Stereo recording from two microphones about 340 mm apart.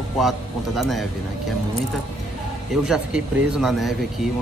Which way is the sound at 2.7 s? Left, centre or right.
Centre.